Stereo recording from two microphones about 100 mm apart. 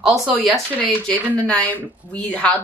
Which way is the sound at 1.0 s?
15° left (ahead or behind).